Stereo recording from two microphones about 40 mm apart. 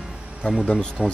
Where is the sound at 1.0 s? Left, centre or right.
Centre.